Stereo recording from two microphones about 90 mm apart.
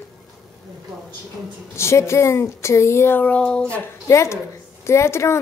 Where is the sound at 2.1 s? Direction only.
30° left (ahead or behind); by 3.8 s 10° left (ahead or behind).